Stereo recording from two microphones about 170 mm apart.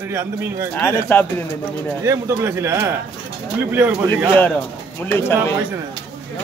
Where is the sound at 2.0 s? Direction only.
15° right (ahead or behind).